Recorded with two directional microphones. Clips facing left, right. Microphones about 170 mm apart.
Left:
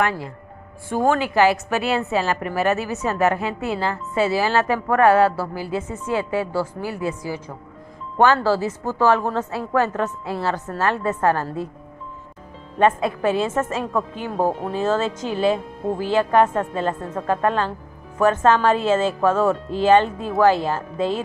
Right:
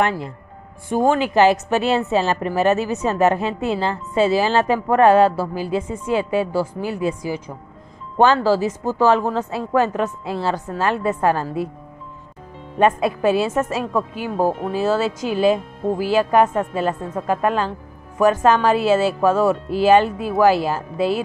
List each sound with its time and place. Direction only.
0.8 s a woman's voice: 15° right (ahead or behind)
12.7 s speech: 15° right (ahead or behind)